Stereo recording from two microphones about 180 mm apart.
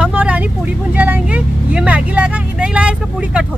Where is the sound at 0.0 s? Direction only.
10° right (ahead or behind).